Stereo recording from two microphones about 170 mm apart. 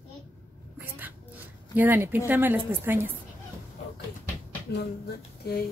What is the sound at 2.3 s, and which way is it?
Speech, 10° right (ahead or behind).